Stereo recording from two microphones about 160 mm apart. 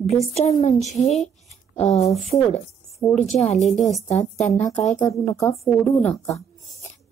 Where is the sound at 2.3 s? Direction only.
20° left (ahead or behind).